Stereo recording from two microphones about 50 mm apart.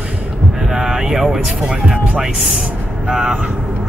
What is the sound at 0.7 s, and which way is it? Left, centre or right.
Speech, centre.